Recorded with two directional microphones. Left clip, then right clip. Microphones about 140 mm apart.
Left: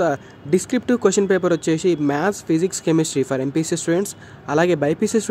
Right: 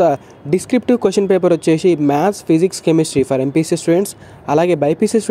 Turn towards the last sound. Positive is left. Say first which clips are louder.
# right 5 dB
turn(degrees=-25)  # may be behind; listen again after turning